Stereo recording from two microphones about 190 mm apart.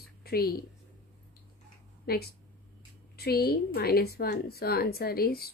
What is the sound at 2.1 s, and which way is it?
Speech, 55° left (ahead or behind).